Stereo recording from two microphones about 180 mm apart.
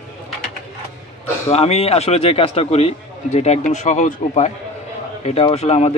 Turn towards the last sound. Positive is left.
turn(degrees=35)  # may be behind; listen again after turning